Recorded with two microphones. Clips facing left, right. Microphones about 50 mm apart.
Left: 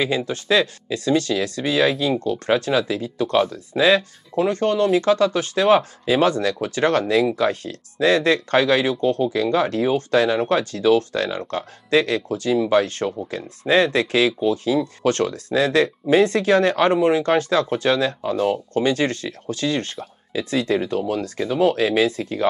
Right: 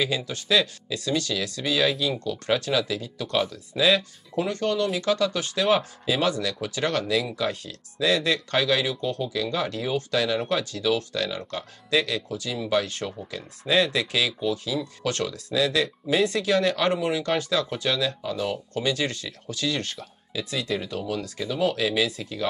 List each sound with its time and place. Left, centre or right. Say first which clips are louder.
0.0 s speech: left 5 dB; left